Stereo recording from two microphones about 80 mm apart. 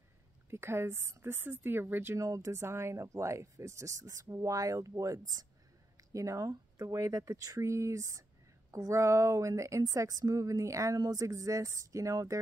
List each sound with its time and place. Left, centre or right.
0.5 s speech: right
2.1 s a woman's voice: right
2.5 s a woman's voice: right